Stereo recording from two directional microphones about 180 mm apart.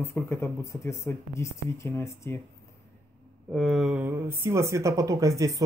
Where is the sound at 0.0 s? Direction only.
15° left (ahead or behind).